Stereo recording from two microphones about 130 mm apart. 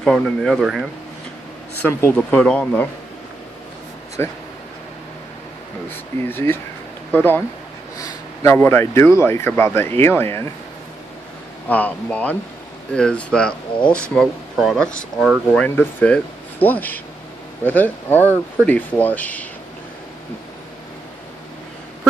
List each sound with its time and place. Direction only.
0.0 s speech: centre (ahead or behind)
1.8 s speech: 20° left (ahead or behind)
4.2 s speech: 20° left (ahead or behind)
6.2 s speech: 15° left (ahead or behind)
8.0 s a sound: 25° left (ahead or behind)
8.5 s speech: 20° left (ahead or behind)
11.7 s speech: 10° left (ahead or behind); by 15.4 s 5° right (ahead or behind)
15.5 s speech: 15° left (ahead or behind)